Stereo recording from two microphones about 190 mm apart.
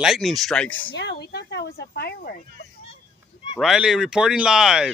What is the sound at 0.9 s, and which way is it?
Speech, 65° left (ahead or behind).